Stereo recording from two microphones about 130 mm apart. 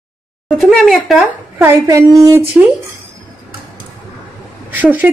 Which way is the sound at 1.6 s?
25° right (ahead or behind).